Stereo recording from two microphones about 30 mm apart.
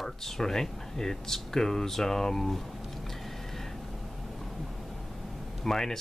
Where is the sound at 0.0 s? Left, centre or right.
Centre.